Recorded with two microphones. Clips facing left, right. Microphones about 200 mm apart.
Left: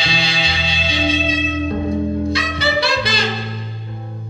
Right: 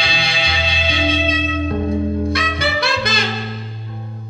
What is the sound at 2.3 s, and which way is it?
Music, 55° right (ahead or behind).